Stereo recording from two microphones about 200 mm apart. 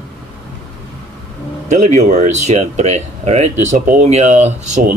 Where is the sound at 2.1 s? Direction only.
35° right (ahead or behind).